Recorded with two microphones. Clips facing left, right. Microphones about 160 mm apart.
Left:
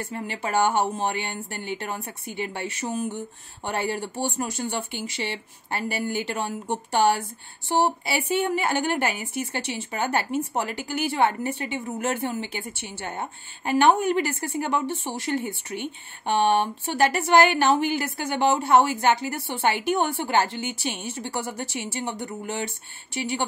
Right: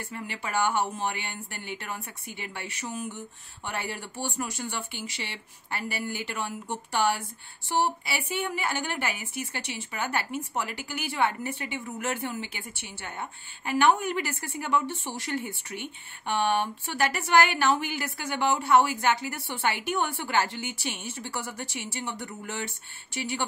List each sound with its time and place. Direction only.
0.1 s a woman's voice: 30° left (ahead or behind)
8.8 s speech: 50° left (ahead or behind)
9.1 s a woman's voice: 30° left (ahead or behind)